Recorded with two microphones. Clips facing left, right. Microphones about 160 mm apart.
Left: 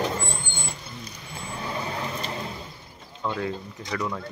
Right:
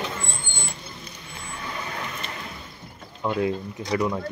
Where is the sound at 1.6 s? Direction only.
30° left (ahead or behind).